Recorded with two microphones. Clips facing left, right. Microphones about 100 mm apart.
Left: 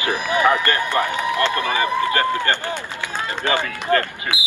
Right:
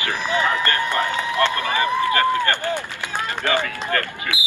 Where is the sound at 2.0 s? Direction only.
20° left (ahead or behind).